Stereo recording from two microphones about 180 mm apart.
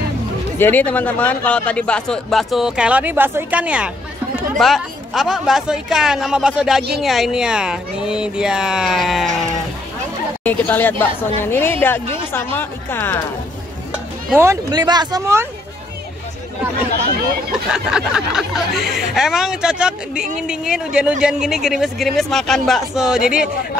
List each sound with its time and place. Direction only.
0.6 s a man's voice: 10° left (ahead or behind)
10.4 s speech: 10° left (ahead or behind)
14.4 s speech: 20° right (ahead or behind)
17.6 s a man's voice: 5° right (ahead or behind)